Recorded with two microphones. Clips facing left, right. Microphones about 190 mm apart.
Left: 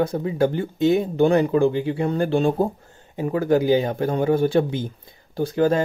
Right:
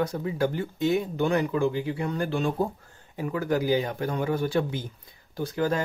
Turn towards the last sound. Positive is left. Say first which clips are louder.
# left 7 dB
turn(degrees=30)  # may be behind; listen again after turning